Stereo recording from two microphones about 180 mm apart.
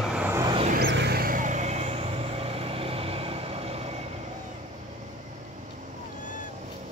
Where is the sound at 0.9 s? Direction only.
65° right (ahead or behind); by 3.8 s 30° right (ahead or behind).